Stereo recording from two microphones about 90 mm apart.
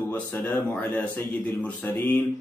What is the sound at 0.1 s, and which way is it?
Speech, 20° left (ahead or behind).